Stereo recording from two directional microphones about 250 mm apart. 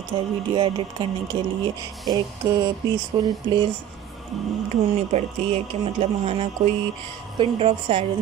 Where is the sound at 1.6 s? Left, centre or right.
Centre.